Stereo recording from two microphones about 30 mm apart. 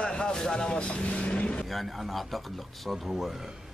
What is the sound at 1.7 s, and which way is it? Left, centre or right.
Speech, centre.